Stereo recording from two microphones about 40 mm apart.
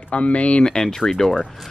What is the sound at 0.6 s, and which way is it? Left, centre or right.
Speech, centre.